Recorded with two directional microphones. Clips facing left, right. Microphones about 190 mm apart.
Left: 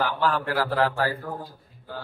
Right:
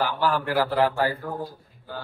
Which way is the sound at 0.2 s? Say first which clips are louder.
Right 1 dB; 15° right (ahead or behind).